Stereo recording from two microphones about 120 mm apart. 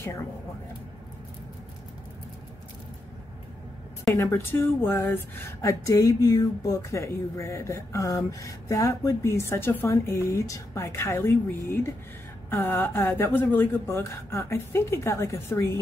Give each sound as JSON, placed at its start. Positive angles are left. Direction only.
{"t": 4.1, "sound": "speech", "side_deg": 20}